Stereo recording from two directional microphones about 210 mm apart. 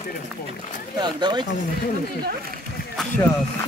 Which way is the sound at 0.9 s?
20° right (ahead or behind).